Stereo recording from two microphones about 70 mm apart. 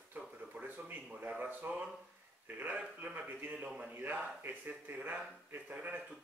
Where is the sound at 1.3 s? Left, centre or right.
Right.